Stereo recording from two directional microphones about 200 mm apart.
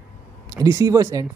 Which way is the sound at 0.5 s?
15° right (ahead or behind).